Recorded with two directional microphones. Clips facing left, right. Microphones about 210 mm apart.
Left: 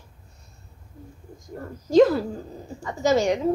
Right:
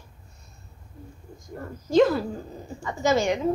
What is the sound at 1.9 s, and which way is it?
A woman's voice, 35° left (ahead or behind).